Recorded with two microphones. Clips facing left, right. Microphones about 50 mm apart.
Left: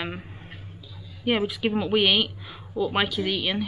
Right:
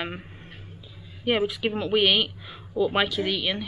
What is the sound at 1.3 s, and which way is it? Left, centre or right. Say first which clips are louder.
A woman's voice: even; centre.